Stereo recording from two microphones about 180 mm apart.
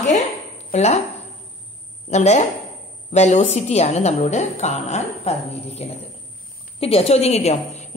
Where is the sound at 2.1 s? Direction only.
40° left (ahead or behind).